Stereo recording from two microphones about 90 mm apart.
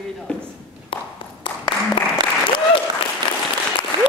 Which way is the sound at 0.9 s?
85° left.